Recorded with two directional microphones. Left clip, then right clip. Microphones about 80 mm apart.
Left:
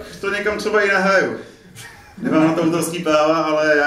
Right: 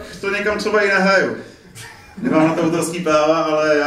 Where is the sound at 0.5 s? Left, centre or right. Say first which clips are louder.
Right 1 dB; centre.